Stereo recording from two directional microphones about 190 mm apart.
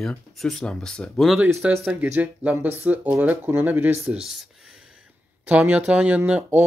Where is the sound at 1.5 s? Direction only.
10° right (ahead or behind).